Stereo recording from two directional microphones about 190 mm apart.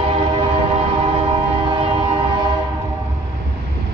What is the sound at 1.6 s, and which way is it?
Train, 25° right (ahead or behind).